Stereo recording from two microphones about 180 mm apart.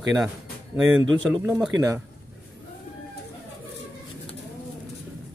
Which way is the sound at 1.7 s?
90° right.